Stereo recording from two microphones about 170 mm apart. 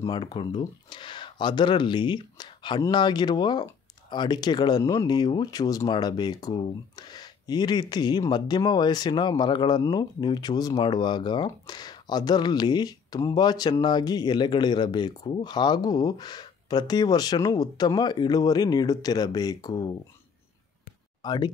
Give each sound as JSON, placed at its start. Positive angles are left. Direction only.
{"t": 0.0, "sound": "speech", "side_deg": 25}
{"t": 21.2, "sound": "speech", "side_deg": 25}